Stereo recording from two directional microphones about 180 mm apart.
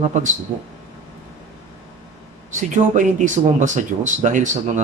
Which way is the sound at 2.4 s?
45° right (ahead or behind).